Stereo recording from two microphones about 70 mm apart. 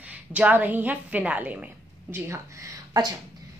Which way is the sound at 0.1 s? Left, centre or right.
Centre.